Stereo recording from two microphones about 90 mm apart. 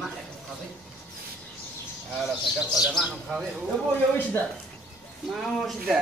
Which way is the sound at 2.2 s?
5° right (ahead or behind).